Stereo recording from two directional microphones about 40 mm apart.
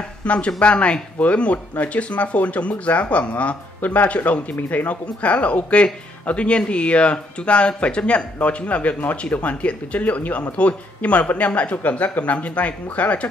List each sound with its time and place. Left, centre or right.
0.2 s speech: left
5.0 s speech: left